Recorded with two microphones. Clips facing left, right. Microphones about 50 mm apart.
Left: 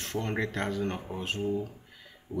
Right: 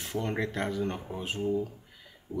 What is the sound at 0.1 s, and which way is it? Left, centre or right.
Speech, centre.